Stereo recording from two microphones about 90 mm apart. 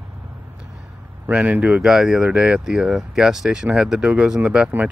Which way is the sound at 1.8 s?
5° right (ahead or behind).